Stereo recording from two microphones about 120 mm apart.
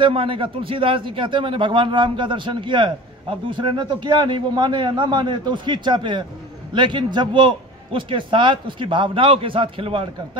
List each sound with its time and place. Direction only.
0.0 s a man's voice: 45° right (ahead or behind)